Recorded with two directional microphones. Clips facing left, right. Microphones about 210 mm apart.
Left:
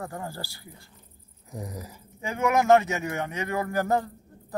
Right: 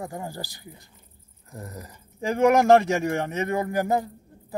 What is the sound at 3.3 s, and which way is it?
Speech, 25° right (ahead or behind).